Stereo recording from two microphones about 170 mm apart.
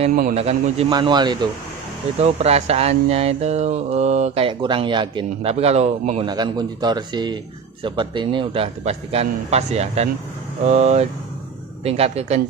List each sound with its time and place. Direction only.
0.1 s a man's voice: 50° right (ahead or behind)
0.4 s speech: 35° right (ahead or behind)
0.9 s speech: 25° right (ahead or behind)
2.1 s speech: 40° right (ahead or behind)
6.2 s speech: 25° right (ahead or behind)